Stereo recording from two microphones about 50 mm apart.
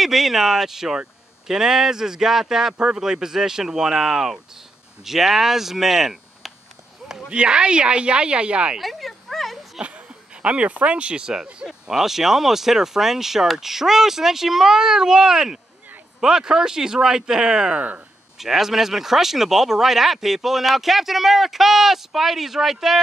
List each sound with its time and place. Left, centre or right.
0.0 s speech: centre
7.2 s speech: centre
8.7 s a sound: centre
9.8 s speech: right
11.6 s speech: centre
17.7 s speech: right
18.4 s speech: centre